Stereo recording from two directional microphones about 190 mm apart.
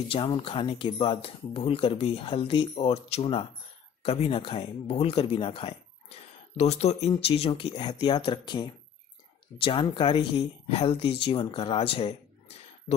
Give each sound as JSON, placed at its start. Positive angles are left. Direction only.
{"t": 0.3, "sound": "speech", "side_deg": 25}